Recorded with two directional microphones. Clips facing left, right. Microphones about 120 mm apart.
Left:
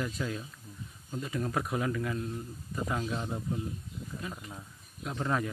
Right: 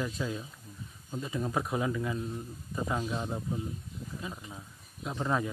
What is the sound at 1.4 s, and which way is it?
Speech, 15° right (ahead or behind).